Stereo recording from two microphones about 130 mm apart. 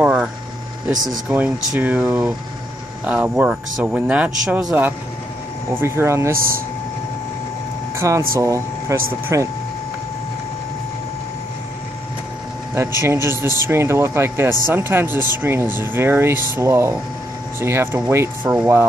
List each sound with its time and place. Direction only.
0.0 s a sound: 5° right (ahead or behind)
1.3 s speech: 15° right (ahead or behind)
7.9 s speech: 20° right (ahead or behind)
12.7 s speech: 20° right (ahead or behind)